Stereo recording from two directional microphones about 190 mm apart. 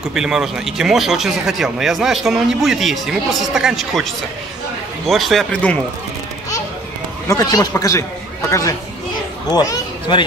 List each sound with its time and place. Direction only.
0.1 s speech: 5° right (ahead or behind)
7.2 s speech: 20° left (ahead or behind)